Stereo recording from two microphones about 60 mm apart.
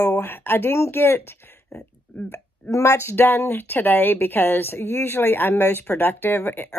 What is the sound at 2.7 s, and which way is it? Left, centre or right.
Speech, left.